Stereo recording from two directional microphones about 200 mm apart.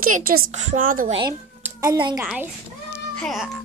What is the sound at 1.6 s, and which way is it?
Speech, 15° right (ahead or behind).